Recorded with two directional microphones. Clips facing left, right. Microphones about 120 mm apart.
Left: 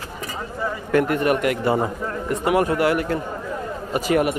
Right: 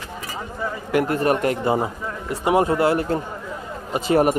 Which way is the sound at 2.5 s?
25° right (ahead or behind).